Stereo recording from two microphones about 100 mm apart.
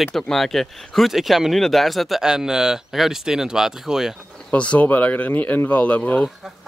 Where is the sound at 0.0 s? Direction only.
5° left (ahead or behind).